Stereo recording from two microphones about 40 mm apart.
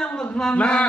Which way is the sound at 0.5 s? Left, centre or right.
Left.